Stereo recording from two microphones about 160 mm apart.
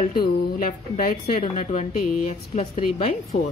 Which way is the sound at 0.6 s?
65° left (ahead or behind).